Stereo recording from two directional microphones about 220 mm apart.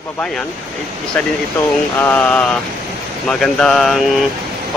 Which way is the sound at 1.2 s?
5° left (ahead or behind).